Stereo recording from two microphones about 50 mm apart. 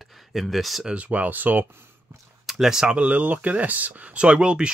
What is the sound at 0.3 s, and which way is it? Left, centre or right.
Speech, centre.